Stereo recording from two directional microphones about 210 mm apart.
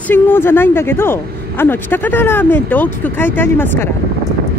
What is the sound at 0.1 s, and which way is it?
Speech, 10° left (ahead or behind).